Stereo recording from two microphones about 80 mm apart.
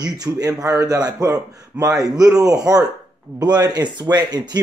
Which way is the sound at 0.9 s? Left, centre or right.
Right.